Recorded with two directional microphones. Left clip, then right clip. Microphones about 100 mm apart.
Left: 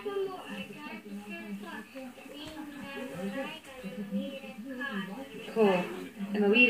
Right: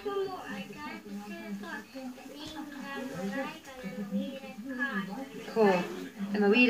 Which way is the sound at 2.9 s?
20° left (ahead or behind).